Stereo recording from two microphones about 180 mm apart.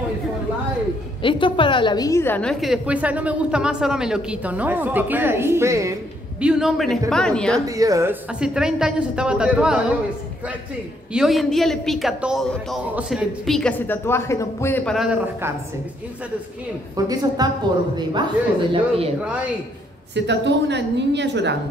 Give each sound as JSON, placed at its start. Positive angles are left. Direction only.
{"t": 1.2, "sound": "a woman's voice", "side_deg": 25}
{"t": 6.4, "sound": "a woman's voice", "side_deg": -5}
{"t": 7.6, "sound": "a woman's voice", "side_deg": -20}
{"t": 11.1, "sound": "a woman's voice", "side_deg": 0}
{"t": 15.0, "sound": "a woman's voice", "side_deg": -5}
{"t": 16.9, "sound": "a woman's voice", "side_deg": -20}
{"t": 18.7, "sound": "speech", "side_deg": -30}
{"t": 20.2, "sound": "a woman's voice", "side_deg": -75}